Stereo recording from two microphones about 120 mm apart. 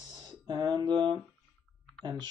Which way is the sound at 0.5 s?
35° right (ahead or behind).